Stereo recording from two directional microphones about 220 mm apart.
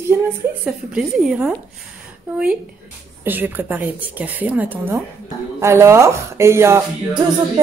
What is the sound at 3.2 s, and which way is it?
A woman's voice, 10° right (ahead or behind).